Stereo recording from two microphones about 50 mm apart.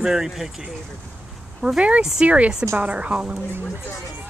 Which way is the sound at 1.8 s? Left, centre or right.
Right.